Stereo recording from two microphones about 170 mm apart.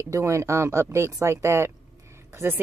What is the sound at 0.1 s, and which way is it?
Speech, 15° right (ahead or behind).